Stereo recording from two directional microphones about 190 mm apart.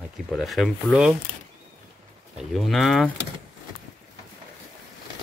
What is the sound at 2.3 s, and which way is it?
Speech, centre (ahead or behind).